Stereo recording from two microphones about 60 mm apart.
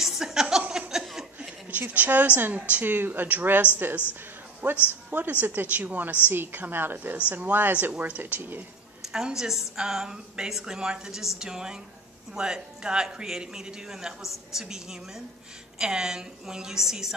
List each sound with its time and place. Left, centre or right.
0.0 s chuckle: centre
1.7 s a woman's voice: right
4.1 s a sound: right
5.1 s a woman's voice: right
7.2 s a woman's voice: right
9.1 s a woman's voice: centre